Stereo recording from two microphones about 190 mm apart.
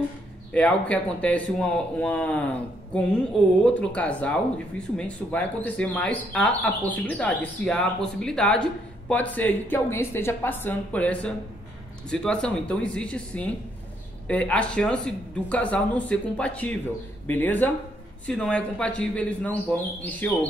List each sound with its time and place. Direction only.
0.5 s speech: 5° left (ahead or behind)